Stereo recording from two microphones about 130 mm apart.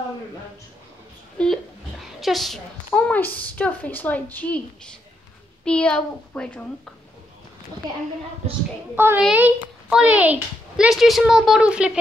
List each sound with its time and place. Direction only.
1.4 s a woman's voice: 10° left (ahead or behind)
8.9 s a woman's voice: 15° right (ahead or behind)